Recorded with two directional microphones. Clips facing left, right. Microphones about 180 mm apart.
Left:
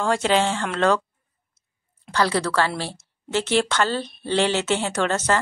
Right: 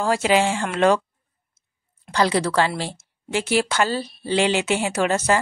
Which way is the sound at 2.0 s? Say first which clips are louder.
Right 2 dB; 15° right (ahead or behind).